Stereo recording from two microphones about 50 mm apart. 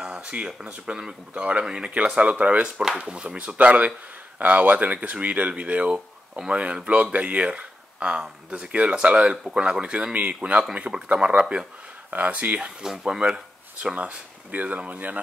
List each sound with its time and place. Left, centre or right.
0.0 s speech: centre
5.9 s a sound: centre
6.5 s speech: right
12.1 s speech: right
12.5 s speech: centre
13.9 s speech: right